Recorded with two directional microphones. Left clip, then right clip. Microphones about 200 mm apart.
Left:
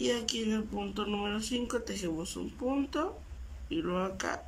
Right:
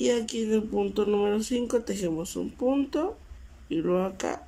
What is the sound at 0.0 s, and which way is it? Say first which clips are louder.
Speech: right 5 dB; 20° right (ahead or behind).